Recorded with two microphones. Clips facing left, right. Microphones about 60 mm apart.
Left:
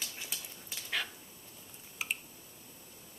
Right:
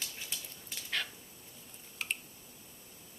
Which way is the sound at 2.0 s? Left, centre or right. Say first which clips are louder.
Left 1 dB; centre.